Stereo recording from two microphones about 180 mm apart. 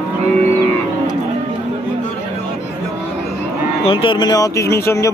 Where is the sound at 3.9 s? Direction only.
30° left (ahead or behind).